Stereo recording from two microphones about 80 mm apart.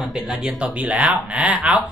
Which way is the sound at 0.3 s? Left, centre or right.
Centre.